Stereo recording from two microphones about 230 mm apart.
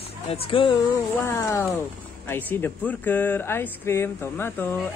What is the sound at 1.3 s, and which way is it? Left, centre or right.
Speech, centre.